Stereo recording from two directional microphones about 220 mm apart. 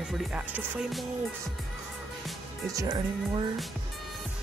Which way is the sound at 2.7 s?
15° right (ahead or behind).